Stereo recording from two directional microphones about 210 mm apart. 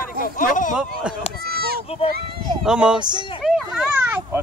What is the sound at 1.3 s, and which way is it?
Bleat, 45° right (ahead or behind).